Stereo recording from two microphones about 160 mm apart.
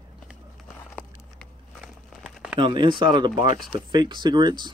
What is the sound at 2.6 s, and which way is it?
Speech, 30° right (ahead or behind).